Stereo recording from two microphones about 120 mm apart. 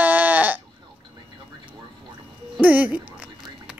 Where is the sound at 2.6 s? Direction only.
15° right (ahead or behind).